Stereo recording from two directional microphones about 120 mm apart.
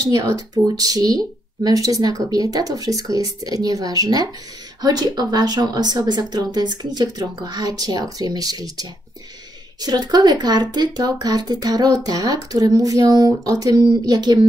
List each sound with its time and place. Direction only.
0.0 s speech: 30° right (ahead or behind)